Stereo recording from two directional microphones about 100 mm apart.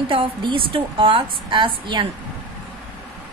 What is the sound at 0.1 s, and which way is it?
A woman's voice, 55° right (ahead or behind).